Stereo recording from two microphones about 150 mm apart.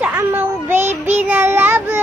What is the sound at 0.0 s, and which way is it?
Child singing, 15° right (ahead or behind).